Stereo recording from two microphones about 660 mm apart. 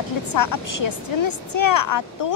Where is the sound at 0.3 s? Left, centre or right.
Left.